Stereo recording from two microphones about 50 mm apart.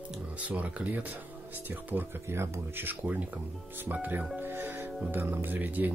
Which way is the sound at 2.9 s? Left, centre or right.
Right.